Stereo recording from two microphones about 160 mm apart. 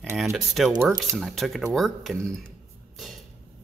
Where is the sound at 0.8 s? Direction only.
15° right (ahead or behind).